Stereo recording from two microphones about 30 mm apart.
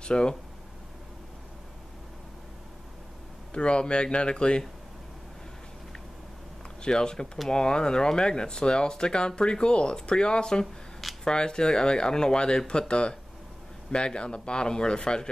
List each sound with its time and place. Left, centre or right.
0.0 s speech: left
3.5 s speech: left
6.8 s speech: left